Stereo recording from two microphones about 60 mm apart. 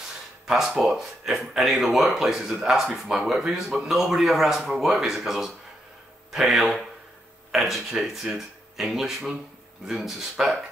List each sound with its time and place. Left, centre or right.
0.8 s speech: centre